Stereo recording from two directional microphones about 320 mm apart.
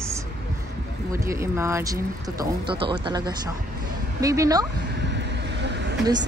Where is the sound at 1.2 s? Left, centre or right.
Centre.